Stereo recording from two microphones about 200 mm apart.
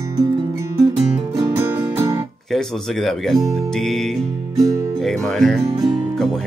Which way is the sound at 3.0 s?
Centre (ahead or behind).